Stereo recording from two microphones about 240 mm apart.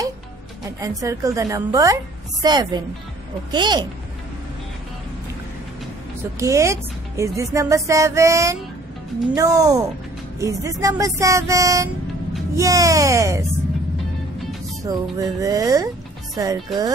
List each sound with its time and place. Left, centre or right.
0.7 s a woman's voice: centre
6.4 s a woman's voice: centre
14.9 s a woman's voice: centre